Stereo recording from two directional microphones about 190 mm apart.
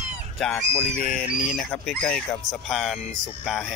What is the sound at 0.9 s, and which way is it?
Speech, 45° left (ahead or behind).